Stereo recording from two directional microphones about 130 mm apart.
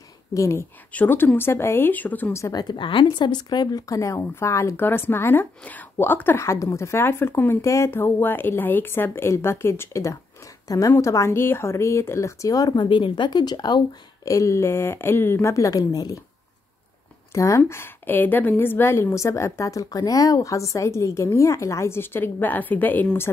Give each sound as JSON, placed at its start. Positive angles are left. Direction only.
{"t": 0.3, "sound": "a woman's voice", "side_deg": 20}
{"t": 2.4, "sound": "speech", "side_deg": 30}
{"t": 17.3, "sound": "speech", "side_deg": 20}